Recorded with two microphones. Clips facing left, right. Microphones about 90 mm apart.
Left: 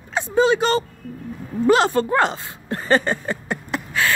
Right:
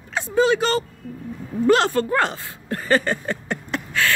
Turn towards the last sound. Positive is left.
turn(degrees=15)  # may be behind; listen again after turning